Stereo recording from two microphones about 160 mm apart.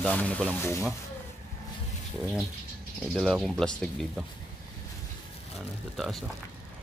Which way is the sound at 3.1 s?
Centre (ahead or behind).